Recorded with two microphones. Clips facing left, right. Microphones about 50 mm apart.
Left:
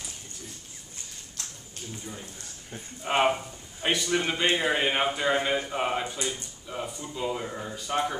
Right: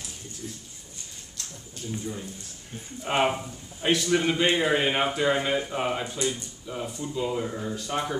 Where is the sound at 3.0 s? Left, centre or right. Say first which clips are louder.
Even; centre.